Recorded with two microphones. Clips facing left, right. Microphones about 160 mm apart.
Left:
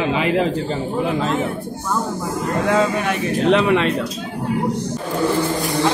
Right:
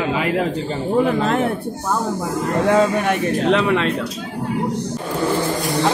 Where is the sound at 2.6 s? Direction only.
55° right (ahead or behind).